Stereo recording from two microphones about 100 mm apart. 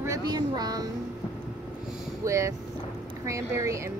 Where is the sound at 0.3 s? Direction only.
45° right (ahead or behind).